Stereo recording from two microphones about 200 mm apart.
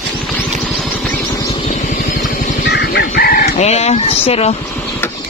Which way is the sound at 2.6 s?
55° left (ahead or behind).